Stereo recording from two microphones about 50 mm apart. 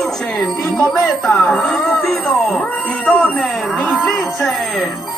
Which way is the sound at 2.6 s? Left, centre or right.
Left.